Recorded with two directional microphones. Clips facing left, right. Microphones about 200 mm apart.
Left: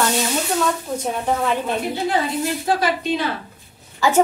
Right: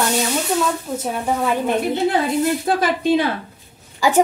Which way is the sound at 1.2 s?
10° right (ahead or behind).